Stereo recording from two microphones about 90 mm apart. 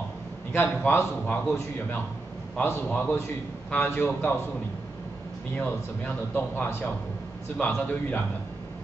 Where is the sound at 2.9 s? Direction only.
15° left (ahead or behind).